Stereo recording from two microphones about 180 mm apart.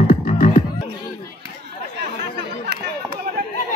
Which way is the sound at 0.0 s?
50° left (ahead or behind).